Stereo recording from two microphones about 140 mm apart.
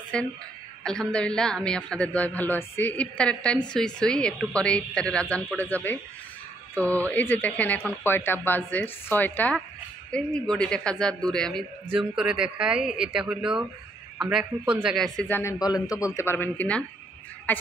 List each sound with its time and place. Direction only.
0.1 s a man's voice: 5° left (ahead or behind)
15.6 s a man's voice: 25° left (ahead or behind)